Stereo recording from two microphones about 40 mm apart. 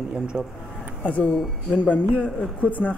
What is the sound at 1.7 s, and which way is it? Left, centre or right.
Speech, left.